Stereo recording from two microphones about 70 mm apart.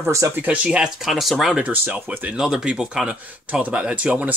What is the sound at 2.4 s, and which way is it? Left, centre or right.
Speech, centre.